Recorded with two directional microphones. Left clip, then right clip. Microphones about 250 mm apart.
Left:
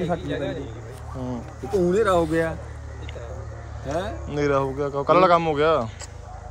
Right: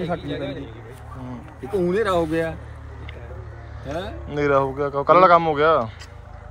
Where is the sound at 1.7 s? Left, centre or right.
Centre.